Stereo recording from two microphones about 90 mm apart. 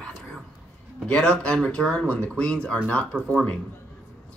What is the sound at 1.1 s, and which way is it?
Speech, 10° left (ahead or behind).